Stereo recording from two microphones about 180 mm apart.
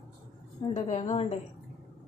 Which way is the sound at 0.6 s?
35° left (ahead or behind).